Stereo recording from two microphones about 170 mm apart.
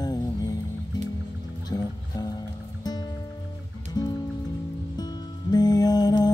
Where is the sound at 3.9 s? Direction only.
25° left (ahead or behind).